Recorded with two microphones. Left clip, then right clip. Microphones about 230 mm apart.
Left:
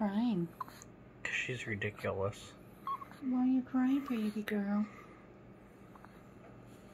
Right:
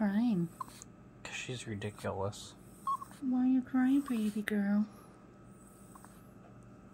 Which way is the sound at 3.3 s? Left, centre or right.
Right.